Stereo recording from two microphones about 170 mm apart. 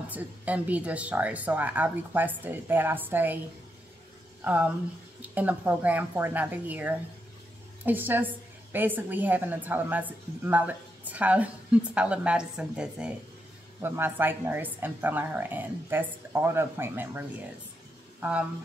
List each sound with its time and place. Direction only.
0.1 s a woman's voice: 10° right (ahead or behind)
5.2 s a woman's voice: 10° right (ahead or behind)